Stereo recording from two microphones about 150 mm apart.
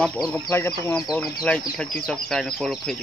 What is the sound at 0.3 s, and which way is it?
Speech, 10° left (ahead or behind).